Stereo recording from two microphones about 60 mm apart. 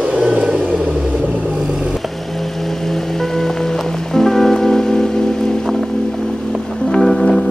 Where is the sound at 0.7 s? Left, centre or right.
Right.